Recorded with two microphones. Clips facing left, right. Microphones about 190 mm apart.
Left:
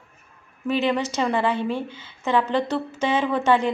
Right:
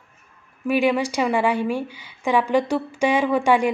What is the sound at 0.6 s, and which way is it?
A woman's voice, 10° right (ahead or behind).